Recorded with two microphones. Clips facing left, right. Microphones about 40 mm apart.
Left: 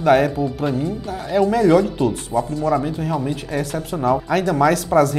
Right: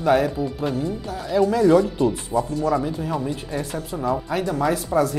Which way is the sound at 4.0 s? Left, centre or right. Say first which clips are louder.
Left 5 dB; left.